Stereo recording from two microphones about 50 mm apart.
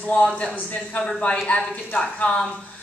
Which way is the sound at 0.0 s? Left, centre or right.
Left.